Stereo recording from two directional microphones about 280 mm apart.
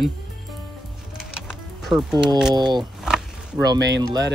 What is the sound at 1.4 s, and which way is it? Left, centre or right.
Music, centre.